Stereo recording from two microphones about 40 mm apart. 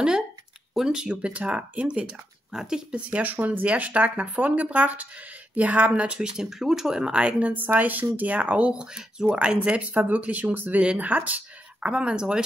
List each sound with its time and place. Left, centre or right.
0.7 s speech: centre
1.0 s speech: right
2.5 s speech: centre
3.1 s speech: right
6.1 s speech: centre
7.0 s speech: right
7.5 s speech: right
11.9 s speech: right